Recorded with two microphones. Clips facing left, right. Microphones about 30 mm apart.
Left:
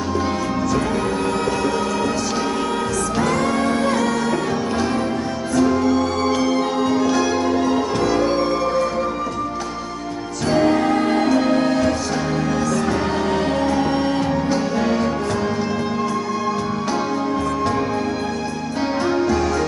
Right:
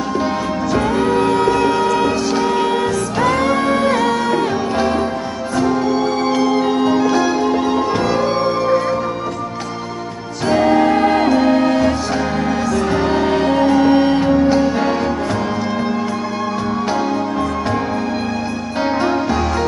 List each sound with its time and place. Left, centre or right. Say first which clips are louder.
0.7 s music: right 5 dB; right
6.2 s music: right 3 dB; centre
10.5 s music: right 4 dB; centre
12.9 s music: right 4 dB; centre
18.8 s music: right 3 dB; right